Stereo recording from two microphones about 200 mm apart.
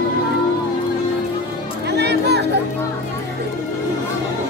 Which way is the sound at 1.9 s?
55° right (ahead or behind).